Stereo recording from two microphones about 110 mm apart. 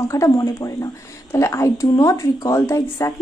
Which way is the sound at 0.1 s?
30° left (ahead or behind).